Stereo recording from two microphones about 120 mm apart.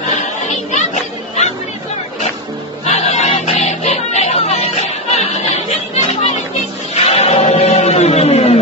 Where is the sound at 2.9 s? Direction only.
70° left (ahead or behind).